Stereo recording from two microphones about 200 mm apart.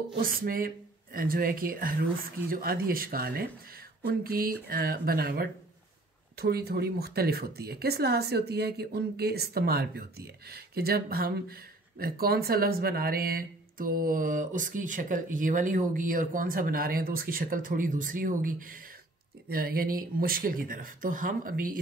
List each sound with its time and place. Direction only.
0.2 s speech: 45° right (ahead or behind)
19.5 s speech: 45° right (ahead or behind)